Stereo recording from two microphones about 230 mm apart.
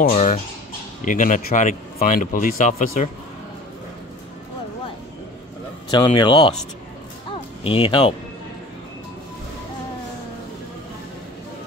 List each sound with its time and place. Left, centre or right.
0.0 s speech: left
5.9 s speech: left
7.6 s speech: left